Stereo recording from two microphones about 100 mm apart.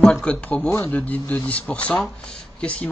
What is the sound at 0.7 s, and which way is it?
Speech, 30° left (ahead or behind).